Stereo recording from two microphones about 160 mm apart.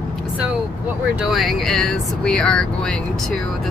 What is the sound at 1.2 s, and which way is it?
Speech, centre (ahead or behind).